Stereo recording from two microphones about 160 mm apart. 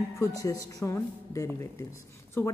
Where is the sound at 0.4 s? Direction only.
20° left (ahead or behind).